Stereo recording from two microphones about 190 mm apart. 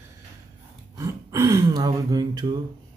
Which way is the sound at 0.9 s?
15° right (ahead or behind).